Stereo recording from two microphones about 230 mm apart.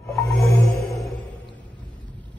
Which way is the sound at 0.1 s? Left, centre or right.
Centre.